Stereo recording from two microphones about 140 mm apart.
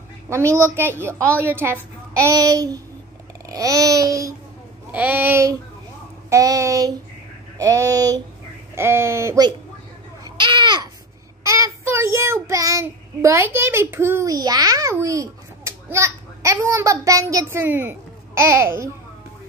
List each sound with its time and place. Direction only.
0.3 s a woman's voice: 20° right (ahead or behind)
4.9 s a sound: 10° right (ahead or behind)
6.3 s a woman's voice: 25° right (ahead or behind)
10.2 s babbling: 35° right (ahead or behind)
11.4 s child singing: 20° right (ahead or behind)